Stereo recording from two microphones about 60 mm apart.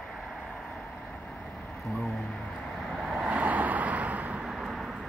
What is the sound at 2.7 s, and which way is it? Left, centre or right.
Vehicle, centre.